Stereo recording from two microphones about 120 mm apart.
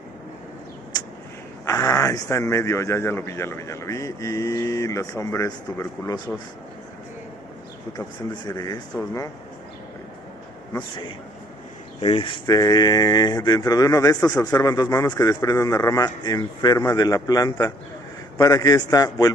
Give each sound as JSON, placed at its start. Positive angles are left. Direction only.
{"t": 1.7, "sound": "a man's voice", "side_deg": 25}
{"t": 8.5, "sound": "speech", "side_deg": 30}
{"t": 12.0, "sound": "speech", "side_deg": 45}
{"t": 12.4, "sound": "speech", "side_deg": 35}